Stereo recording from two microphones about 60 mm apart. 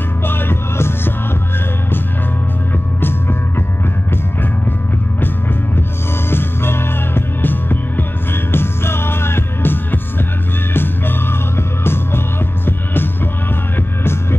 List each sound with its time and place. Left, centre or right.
0.2 s music: left
3.0 s music: left
6.3 s music: left